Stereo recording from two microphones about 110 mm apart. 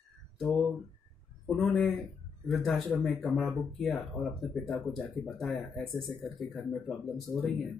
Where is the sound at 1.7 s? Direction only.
15° left (ahead or behind).